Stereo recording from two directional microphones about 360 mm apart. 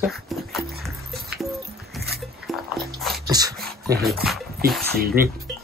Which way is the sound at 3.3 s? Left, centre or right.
Centre.